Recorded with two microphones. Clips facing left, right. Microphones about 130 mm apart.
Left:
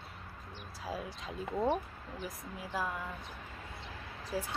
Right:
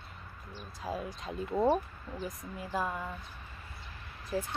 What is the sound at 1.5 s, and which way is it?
Speech, 15° right (ahead or behind).